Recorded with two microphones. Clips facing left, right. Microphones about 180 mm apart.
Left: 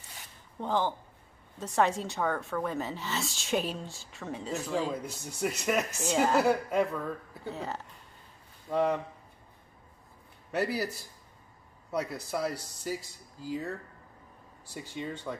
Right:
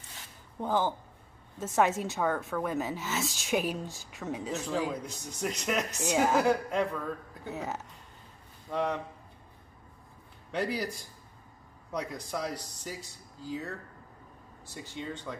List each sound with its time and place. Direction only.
0.6 s a woman's voice: 5° right (ahead or behind)
3.4 s speech: 10° right (ahead or behind)
4.5 s a woman's voice: centre (ahead or behind)
5.9 s speech: 10° right (ahead or behind)
6.3 s speech: 5° left (ahead or behind)
7.4 s speech: 15° right (ahead or behind)
8.6 s speech: 5° left (ahead or behind)
10.5 s speech: 5° left (ahead or behind)